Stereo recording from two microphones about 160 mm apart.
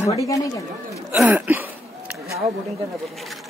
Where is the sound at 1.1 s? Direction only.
10° right (ahead or behind).